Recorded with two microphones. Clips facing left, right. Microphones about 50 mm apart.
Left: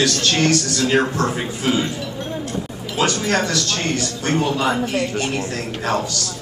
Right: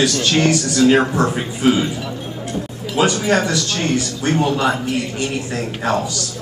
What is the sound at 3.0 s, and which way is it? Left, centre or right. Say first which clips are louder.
A man's voice: right 3 dB; centre.